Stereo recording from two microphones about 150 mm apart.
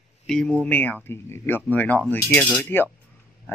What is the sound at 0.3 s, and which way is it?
Speech, 5° left (ahead or behind).